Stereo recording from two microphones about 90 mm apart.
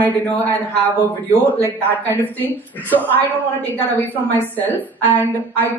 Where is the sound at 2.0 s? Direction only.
20° left (ahead or behind).